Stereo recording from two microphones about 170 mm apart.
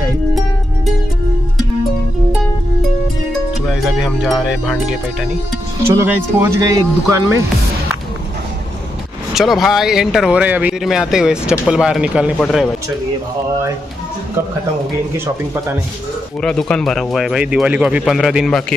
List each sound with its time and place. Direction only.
3.6 s speech: centre (ahead or behind)
5.9 s speech: 15° right (ahead or behind)
9.3 s speech: centre (ahead or behind)
16.3 s speech: 5° left (ahead or behind)